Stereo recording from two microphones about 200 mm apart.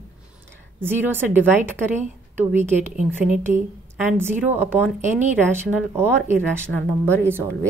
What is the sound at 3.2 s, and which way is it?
A woman's voice, 10° right (ahead or behind).